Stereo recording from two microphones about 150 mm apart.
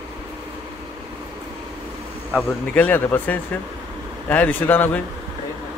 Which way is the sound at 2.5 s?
10° left (ahead or behind).